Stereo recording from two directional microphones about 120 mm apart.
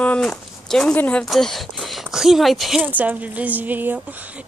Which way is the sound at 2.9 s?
15° right (ahead or behind).